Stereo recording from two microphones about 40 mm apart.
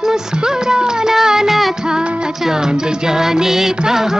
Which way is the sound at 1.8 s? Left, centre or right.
Centre.